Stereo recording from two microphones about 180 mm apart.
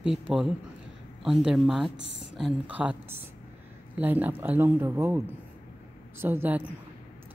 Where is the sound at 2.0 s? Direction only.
85° right.